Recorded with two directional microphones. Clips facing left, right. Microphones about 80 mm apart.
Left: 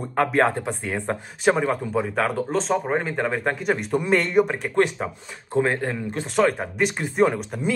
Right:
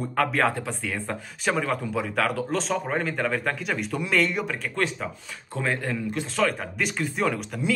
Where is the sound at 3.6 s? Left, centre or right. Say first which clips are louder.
Left 5 dB; left.